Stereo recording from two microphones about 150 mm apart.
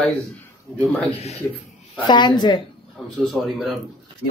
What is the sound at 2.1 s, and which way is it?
Speech, 30° left (ahead or behind).